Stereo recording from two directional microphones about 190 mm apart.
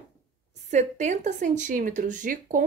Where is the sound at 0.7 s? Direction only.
40° right (ahead or behind).